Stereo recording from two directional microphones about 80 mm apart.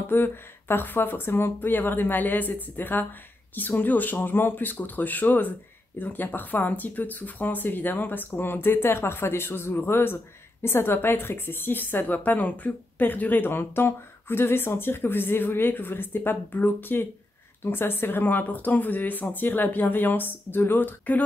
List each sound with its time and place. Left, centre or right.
0.1 s a woman's voice: left